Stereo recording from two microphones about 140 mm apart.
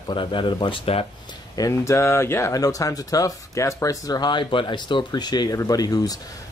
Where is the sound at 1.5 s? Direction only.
25° left (ahead or behind).